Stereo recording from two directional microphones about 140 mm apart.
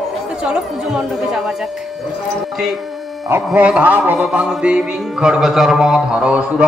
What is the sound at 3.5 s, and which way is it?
A man's voice, 10° right (ahead or behind).